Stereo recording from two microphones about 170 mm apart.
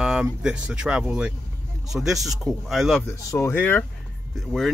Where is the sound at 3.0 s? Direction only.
20° left (ahead or behind); by 4.7 s centre (ahead or behind).